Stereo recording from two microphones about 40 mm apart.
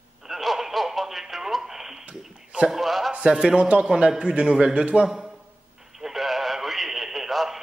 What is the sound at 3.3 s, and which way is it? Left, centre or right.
A man's voice, centre.